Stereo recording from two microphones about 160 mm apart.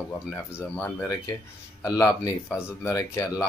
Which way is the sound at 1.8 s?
20° left (ahead or behind).